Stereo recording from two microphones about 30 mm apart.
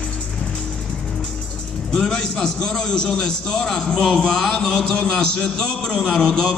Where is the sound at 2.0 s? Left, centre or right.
Centre.